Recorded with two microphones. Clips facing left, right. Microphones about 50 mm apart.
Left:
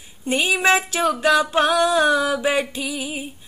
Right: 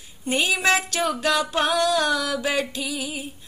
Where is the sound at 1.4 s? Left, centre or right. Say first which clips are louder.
Left 5 dB; centre.